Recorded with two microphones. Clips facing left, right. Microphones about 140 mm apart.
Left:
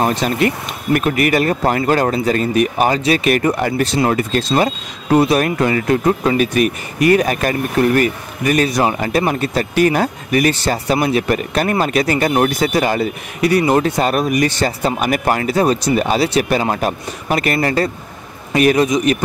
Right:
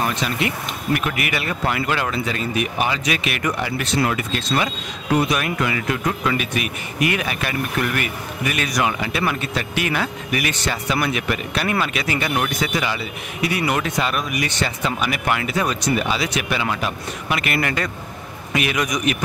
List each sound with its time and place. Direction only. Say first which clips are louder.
0.0 s speech: left 7 dB; 40° left (ahead or behind)
9.0 s a man's voice: left 6 dB; 45° left (ahead or behind)
18.9 s a man's voice: left 7 dB; 25° left (ahead or behind)